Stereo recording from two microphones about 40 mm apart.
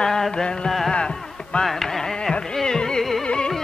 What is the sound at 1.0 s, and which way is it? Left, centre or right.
Music, left.